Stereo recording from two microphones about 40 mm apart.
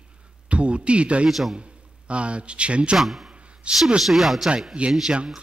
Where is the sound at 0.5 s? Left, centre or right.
Right.